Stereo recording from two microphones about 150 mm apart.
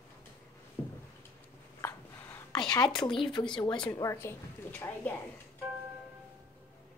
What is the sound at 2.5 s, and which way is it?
Speech, 25° left (ahead or behind).